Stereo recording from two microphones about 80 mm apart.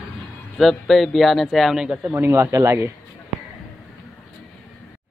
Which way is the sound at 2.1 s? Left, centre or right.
Right.